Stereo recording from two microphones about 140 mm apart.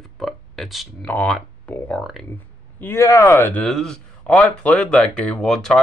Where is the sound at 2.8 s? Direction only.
20° left (ahead or behind).